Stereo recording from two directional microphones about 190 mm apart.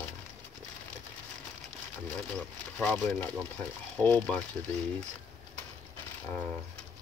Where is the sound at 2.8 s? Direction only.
10° left (ahead or behind).